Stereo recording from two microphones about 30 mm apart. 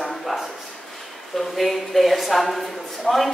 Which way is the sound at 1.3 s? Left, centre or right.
Centre.